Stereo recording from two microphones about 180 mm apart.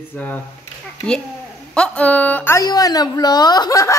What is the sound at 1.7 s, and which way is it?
A woman's voice, 5° left (ahead or behind).